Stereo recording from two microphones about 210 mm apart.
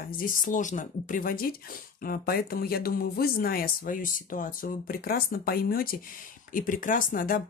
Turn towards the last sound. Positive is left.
turn(degrees=40)  # may be behind; listen again after turning